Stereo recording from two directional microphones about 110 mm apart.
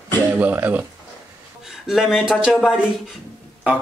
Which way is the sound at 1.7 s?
Centre (ahead or behind).